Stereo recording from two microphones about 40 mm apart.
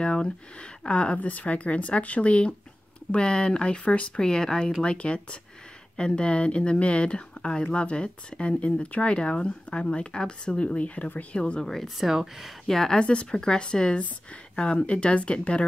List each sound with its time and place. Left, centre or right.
0.0 s speech: left
1.2 s speech: left
11.6 s speech: centre
12.2 s speech: centre
12.6 s speech: centre
13.0 s speech: left